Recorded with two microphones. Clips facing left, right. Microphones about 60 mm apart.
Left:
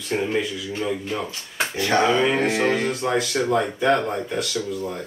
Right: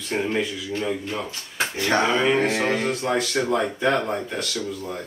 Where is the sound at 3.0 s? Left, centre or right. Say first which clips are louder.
Left 1 dB; centre.